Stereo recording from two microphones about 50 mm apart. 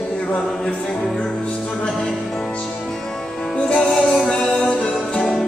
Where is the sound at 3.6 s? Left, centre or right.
Centre.